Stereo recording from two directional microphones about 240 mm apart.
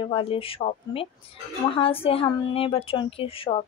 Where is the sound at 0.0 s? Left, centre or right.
Left.